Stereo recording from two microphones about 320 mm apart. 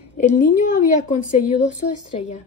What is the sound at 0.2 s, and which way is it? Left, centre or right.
A woman's voice, left.